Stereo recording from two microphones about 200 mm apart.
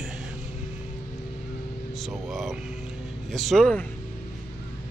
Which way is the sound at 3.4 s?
5° left (ahead or behind).